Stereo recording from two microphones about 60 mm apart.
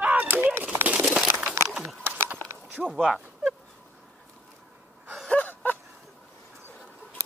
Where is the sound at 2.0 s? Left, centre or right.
Right.